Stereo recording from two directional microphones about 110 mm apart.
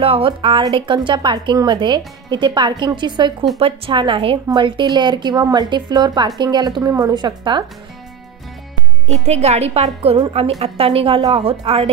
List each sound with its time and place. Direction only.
0.0 s a woman's voice: 55° right (ahead or behind)
3.5 s a woman's voice: 60° right (ahead or behind); by 7.6 s 45° right (ahead or behind)
9.2 s a woman's voice: 75° right (ahead or behind)